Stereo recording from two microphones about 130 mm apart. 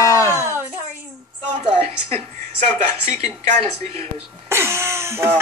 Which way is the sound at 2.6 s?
70° right (ahead or behind).